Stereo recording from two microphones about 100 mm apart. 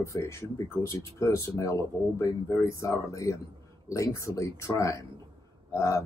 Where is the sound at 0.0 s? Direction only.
30° left (ahead or behind).